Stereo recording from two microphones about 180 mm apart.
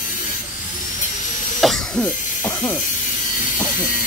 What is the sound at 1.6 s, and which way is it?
Cough, centre (ahead or behind).